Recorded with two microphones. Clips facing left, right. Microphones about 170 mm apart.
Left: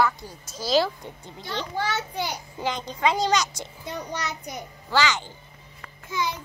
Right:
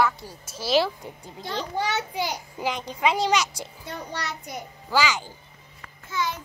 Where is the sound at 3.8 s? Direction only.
20° left (ahead or behind).